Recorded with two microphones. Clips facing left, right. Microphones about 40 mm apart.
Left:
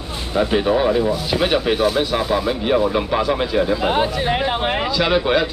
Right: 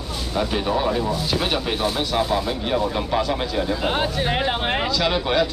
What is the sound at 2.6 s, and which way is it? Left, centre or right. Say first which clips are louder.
Speech: left 5 dB; left.